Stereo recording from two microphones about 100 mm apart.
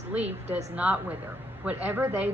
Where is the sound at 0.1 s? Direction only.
15° right (ahead or behind).